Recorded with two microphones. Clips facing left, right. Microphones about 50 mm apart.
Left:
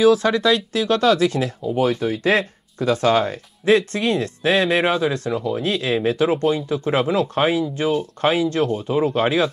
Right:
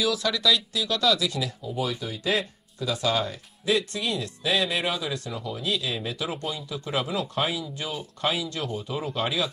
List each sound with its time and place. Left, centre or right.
0.0 s speech: left